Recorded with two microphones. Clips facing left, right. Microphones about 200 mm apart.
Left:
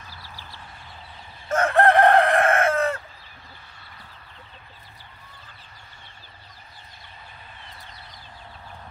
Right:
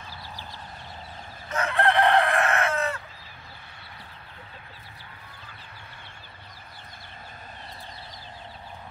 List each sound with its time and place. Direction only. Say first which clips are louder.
1.5 s chicken: left 6 dB; 50° left (ahead or behind)